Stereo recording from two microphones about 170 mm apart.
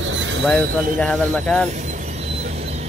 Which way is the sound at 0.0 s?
90° right.